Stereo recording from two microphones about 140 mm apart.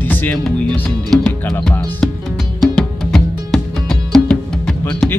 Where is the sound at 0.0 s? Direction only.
15° left (ahead or behind).